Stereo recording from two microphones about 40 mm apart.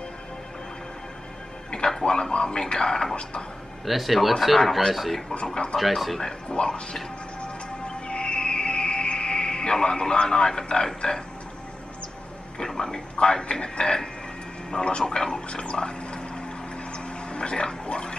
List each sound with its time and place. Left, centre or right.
1.7 s music: centre
2.0 s speech: centre
3.8 s speech: centre
5.3 s speech: left
5.8 s speech: centre
6.5 s speech: centre
7.8 s music: left
12.5 s speech: centre
16.9 s a sound: left